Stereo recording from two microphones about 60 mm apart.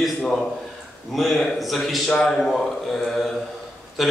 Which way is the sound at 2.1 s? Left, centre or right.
Centre.